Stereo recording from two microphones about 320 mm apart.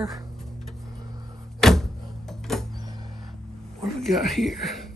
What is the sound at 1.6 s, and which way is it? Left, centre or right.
Door, centre.